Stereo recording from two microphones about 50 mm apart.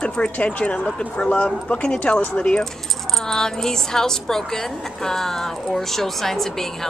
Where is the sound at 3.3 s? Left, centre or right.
Centre.